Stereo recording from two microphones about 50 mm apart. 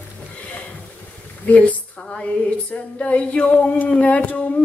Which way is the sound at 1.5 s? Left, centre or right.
Left.